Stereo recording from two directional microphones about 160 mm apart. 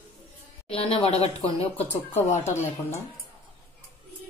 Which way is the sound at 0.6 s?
40° left (ahead or behind).